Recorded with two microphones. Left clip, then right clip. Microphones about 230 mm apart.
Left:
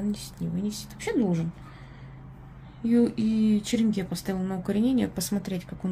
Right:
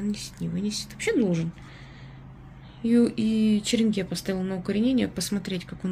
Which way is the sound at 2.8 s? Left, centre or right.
Centre.